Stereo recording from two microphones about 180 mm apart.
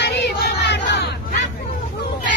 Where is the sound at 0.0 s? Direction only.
70° left (ahead or behind).